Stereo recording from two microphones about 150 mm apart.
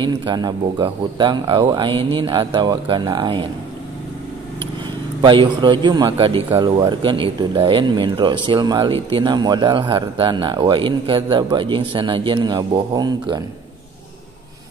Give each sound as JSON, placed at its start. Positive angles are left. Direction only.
{"t": 0.0, "sound": "speech", "side_deg": -30}
{"t": 5.2, "sound": "speech", "side_deg": -30}